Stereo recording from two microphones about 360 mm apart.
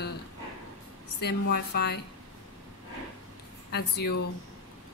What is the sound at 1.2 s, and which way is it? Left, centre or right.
Speech, left.